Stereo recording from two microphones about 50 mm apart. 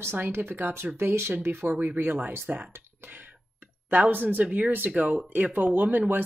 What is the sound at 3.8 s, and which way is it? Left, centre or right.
Speech, right.